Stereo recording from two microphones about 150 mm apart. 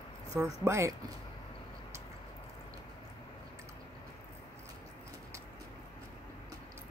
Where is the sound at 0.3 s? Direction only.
20° right (ahead or behind).